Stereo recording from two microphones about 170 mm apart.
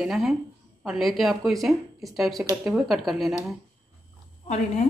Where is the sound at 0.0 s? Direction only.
Centre (ahead or behind).